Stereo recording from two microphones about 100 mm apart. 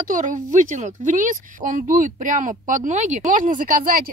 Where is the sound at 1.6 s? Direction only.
60° right (ahead or behind).